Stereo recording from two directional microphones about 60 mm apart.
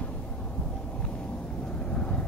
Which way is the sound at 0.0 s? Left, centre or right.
Left.